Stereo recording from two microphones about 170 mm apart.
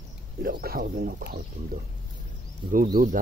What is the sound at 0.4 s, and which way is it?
Speech, 60° right (ahead or behind).